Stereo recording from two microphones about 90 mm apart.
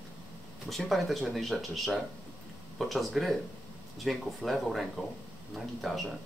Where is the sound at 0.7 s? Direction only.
Centre (ahead or behind).